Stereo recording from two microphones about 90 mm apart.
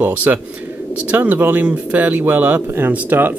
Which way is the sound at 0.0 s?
20° right (ahead or behind).